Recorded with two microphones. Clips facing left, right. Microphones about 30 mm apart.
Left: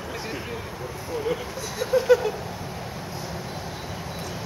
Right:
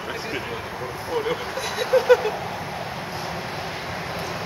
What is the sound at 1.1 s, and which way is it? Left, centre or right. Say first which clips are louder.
Speech: right 3 dB; right.